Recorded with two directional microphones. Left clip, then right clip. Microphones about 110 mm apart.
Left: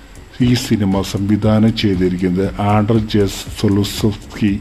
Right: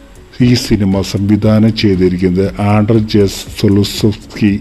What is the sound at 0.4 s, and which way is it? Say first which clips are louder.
Speech: right 4 dB; 45° right (ahead or behind).